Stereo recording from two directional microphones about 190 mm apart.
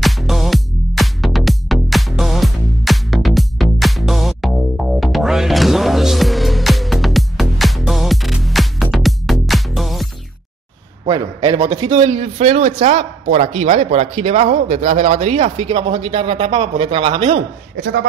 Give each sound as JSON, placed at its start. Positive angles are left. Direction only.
{"t": 0.0, "sound": "music", "side_deg": 0}
{"t": 11.1, "sound": "a sound", "side_deg": -20}
{"t": 11.9, "sound": "speech", "side_deg": -30}